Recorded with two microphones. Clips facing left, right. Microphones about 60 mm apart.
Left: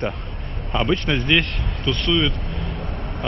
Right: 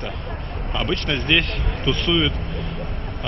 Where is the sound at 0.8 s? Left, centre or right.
Centre.